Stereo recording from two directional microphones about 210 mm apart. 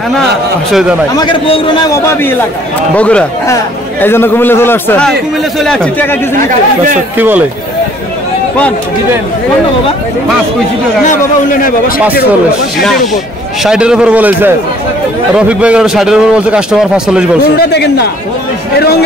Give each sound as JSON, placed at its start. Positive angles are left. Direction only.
{"t": 0.7, "sound": "a man's voice", "side_deg": 0}
{"t": 1.1, "sound": "a man's voice", "side_deg": 20}
{"t": 7.2, "sound": "speech", "side_deg": -10}
{"t": 11.1, "sound": "a man's voice", "side_deg": 40}
{"t": 13.7, "sound": "a man's voice", "side_deg": -5}
{"t": 17.6, "sound": "speech", "side_deg": 50}